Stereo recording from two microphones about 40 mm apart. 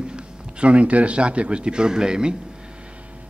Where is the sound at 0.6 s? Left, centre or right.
Right.